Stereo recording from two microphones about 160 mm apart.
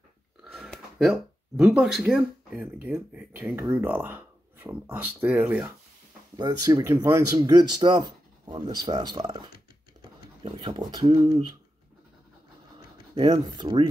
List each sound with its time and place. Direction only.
0.4 s a sound: centre (ahead or behind)
1.6 s speech: 5° right (ahead or behind)
2.5 s speech: 15° right (ahead or behind)
6.3 s speech: 25° right (ahead or behind)
13.1 s speech: 25° right (ahead or behind)